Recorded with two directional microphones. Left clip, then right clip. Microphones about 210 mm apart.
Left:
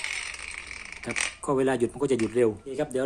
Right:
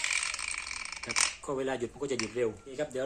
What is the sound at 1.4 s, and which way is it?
Speech, 50° left (ahead or behind).